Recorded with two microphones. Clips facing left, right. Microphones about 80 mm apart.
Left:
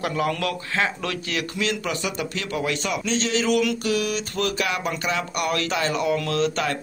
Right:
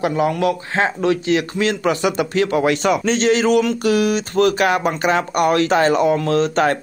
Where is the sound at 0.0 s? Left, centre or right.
Right.